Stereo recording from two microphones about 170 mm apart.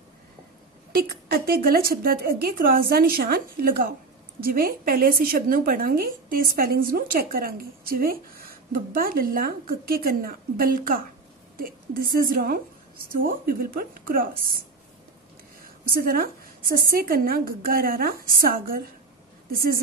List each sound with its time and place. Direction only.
0.9 s a woman's voice: 60° right (ahead or behind)
15.6 s a woman's voice: 60° right (ahead or behind)